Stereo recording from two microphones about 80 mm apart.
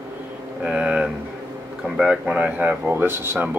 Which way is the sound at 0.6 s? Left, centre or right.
Centre.